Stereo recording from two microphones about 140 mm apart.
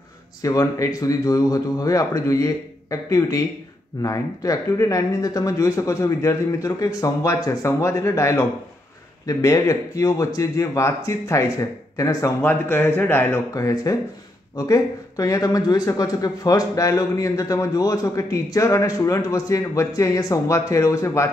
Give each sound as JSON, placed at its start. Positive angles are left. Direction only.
{"t": 0.4, "sound": "speech", "side_deg": 25}